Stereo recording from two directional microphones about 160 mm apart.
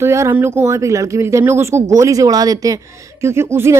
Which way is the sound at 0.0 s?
15° right (ahead or behind).